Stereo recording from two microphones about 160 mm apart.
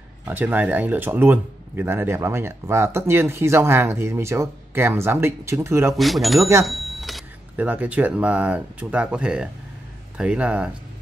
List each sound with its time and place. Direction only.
0.2 s speech: 10° right (ahead or behind)
5.9 s speech: centre (ahead or behind)